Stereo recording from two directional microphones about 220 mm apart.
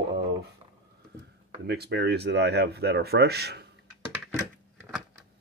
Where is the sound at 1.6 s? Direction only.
50° right (ahead or behind).